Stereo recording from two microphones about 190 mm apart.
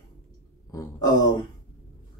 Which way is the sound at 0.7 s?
20° left (ahead or behind).